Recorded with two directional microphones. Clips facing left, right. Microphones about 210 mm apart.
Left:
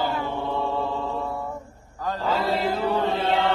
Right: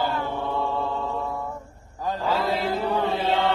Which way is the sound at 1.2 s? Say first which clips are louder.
Left 1 dB; 5° left (ahead or behind).